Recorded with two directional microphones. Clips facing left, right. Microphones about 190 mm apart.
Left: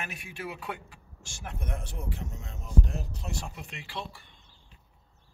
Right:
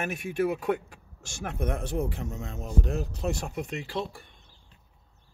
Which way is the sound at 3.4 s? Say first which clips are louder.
Right 9 dB; 45° right (ahead or behind).